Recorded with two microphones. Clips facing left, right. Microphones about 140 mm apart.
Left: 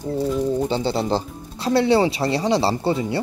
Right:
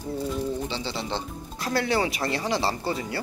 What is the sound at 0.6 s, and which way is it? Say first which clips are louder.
Speech: left 9 dB; 45° left (ahead or behind).